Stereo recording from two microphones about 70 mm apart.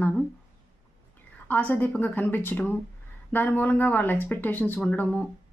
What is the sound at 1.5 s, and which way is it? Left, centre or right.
Speech, left.